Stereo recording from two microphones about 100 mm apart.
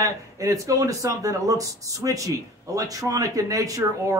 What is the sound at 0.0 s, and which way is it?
Speech, 35° right (ahead or behind).